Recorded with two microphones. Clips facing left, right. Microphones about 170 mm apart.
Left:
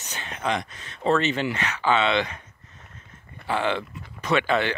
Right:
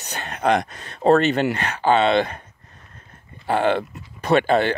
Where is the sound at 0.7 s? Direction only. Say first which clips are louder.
Right 5 dB; 40° right (ahead or behind).